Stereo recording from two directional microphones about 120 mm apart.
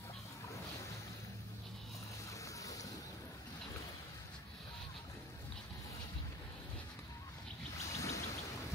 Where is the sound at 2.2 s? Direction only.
25° left (ahead or behind).